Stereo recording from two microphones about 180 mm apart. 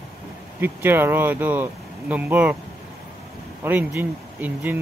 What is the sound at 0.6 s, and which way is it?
Speech, 10° right (ahead or behind).